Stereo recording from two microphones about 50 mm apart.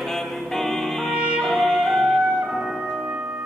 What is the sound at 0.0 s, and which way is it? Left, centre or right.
Music, centre.